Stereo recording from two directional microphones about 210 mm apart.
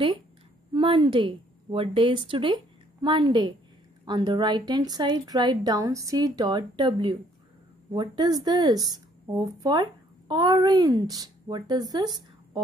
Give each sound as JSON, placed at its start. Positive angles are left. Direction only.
{"t": 0.7, "sound": "a woman's voice", "side_deg": -20}